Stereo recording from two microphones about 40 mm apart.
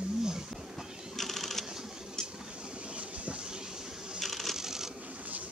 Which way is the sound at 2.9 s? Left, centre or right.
Right.